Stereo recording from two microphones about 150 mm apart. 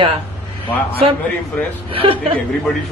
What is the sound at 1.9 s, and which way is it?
Speech, 40° right (ahead or behind).